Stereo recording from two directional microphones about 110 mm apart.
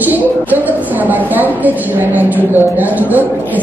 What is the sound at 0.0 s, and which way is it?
A woman's voice, 15° right (ahead or behind).